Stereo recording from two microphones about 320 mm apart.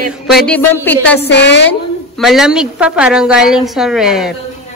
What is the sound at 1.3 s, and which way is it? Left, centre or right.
Speech, left.